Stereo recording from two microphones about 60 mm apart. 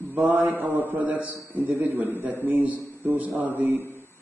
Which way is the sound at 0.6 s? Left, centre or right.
Right.